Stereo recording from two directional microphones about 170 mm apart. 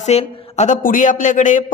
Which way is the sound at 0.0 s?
40° left (ahead or behind).